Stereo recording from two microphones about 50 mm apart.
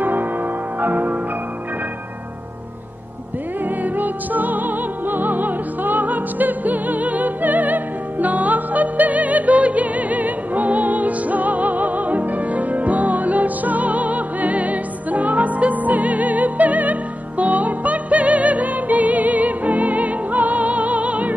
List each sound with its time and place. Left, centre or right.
0.0 s music: right
3.6 s music: right